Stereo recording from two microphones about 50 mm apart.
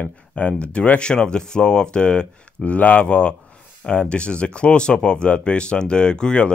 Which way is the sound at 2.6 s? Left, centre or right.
Left.